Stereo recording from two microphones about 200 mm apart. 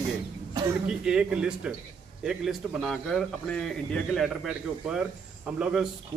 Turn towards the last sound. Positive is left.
turn(degrees=-5)  # may be behind; listen again after turning